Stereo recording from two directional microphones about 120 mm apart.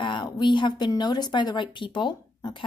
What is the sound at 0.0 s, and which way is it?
A woman's voice, 40° left (ahead or behind).